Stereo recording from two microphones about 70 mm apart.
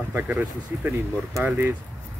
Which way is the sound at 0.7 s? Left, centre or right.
Right.